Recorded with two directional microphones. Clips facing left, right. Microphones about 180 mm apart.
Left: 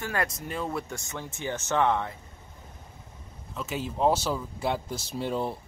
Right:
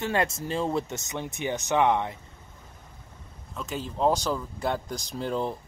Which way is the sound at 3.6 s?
5° left (ahead or behind).